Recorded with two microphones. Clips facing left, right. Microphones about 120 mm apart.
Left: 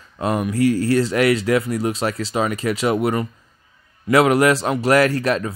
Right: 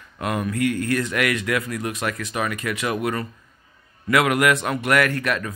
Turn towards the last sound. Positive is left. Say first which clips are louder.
# left 4 dB
turn(degrees=30)  # may be behind; listen again after turning